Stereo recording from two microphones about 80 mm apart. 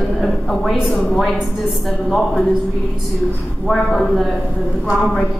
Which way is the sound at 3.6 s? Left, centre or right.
Centre.